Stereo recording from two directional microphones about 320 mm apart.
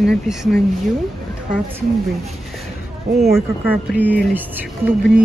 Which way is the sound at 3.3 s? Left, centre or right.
Centre.